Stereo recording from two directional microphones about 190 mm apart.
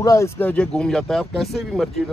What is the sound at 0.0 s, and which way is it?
Speech, 15° left (ahead or behind).